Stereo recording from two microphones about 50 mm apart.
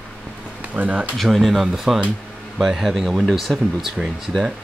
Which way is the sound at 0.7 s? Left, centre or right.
Right.